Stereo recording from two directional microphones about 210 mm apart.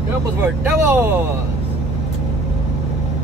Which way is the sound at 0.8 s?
10° right (ahead or behind).